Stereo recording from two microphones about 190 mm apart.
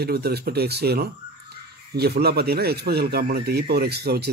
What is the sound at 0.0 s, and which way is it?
Speech, 55° right (ahead or behind).